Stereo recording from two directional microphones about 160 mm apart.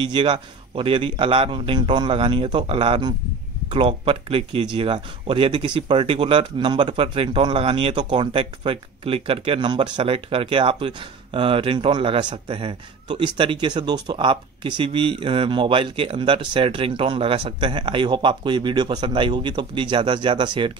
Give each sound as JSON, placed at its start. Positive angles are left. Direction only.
{"t": 0.0, "sound": "speech", "side_deg": -30}